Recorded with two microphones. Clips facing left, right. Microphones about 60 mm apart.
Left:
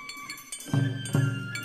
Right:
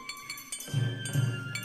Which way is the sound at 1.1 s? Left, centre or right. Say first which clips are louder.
Left 6 dB; left.